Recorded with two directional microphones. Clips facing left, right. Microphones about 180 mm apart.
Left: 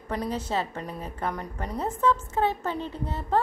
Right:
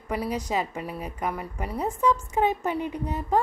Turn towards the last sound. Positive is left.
turn(degrees=-15)  # may be behind; listen again after turning